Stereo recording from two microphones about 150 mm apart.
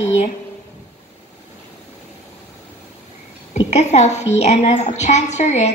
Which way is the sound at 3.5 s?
50° left (ahead or behind).